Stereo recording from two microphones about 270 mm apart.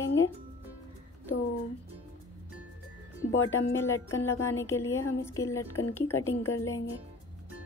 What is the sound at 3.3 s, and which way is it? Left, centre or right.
Speech, left.